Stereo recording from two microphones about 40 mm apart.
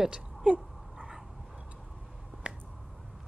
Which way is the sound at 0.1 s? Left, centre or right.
Right.